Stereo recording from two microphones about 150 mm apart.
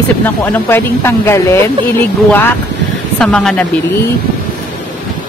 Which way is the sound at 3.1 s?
5° left (ahead or behind).